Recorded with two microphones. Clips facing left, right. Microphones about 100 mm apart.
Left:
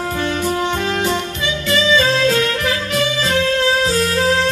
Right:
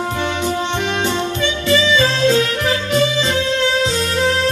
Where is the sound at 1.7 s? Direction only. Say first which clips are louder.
Left 1 dB; 30° right (ahead or behind).